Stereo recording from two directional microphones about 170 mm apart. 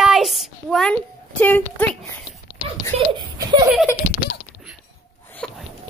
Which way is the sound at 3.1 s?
25° right (ahead or behind).